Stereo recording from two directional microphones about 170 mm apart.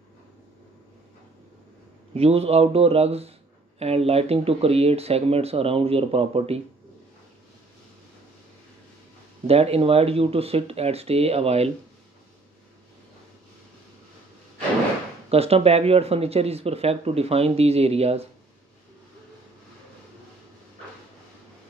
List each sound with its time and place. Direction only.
2.1 s speech: 35° right (ahead or behind)
9.5 s speech: 35° right (ahead or behind)
15.2 s speech: 35° right (ahead or behind)